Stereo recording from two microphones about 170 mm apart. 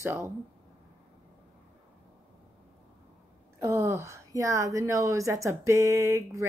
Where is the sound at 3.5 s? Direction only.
15° right (ahead or behind).